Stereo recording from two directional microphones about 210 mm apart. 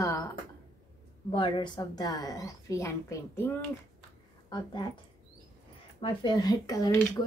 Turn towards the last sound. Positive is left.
turn(degrees=10)  # may be behind; listen again after turning